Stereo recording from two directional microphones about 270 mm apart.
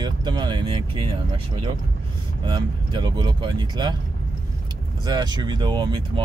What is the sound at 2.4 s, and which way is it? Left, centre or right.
Speech, centre.